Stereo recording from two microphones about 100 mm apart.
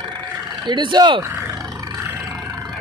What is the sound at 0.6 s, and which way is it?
Speech, 50° right (ahead or behind).